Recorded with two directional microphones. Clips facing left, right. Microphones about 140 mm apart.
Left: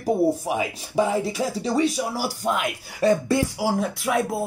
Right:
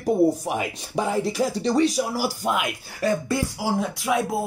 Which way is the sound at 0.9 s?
Centre (ahead or behind).